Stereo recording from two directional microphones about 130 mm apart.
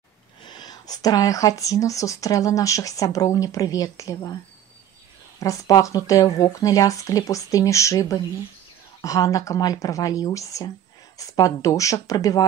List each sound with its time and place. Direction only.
0.5 s speech: 35° left (ahead or behind)
5.4 s speech: 25° left (ahead or behind)